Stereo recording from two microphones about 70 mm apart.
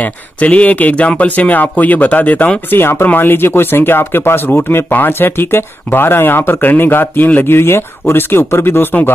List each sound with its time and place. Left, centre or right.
0.0 s speech: centre